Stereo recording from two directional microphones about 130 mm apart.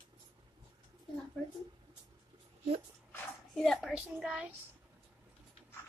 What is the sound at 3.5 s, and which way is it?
A child's voice, centre (ahead or behind).